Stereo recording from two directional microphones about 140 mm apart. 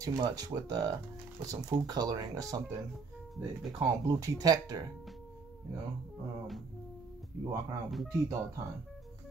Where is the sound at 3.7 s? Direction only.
25° right (ahead or behind).